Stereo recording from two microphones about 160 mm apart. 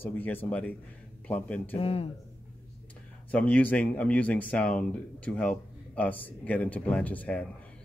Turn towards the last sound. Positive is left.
turn(degrees=10)  # may be behind; listen again after turning